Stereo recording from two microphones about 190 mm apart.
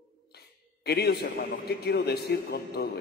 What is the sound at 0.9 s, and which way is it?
A man's voice, 60° left (ahead or behind).